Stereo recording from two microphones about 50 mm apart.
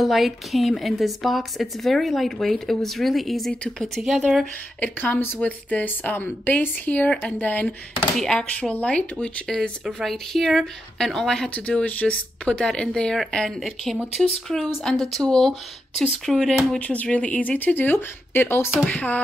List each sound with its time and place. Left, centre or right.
0.0 s a woman's voice: centre
5.4 s speech: left
8.2 s speech: centre
8.5 s speech: left
9.5 s speech: centre
11.5 s speech: left
12.5 s speech: centre
13.6 s a woman's voice: centre
16.8 s speech: left
17.7 s speech: left
18.9 s speech: left